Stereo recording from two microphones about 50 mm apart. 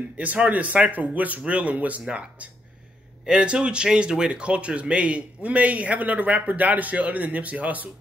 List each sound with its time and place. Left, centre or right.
0.2 s speech: right